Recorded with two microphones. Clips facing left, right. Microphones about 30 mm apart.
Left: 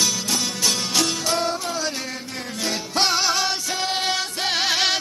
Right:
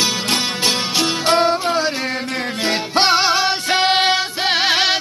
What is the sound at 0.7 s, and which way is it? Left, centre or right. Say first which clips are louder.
Music: right 3 dB; right.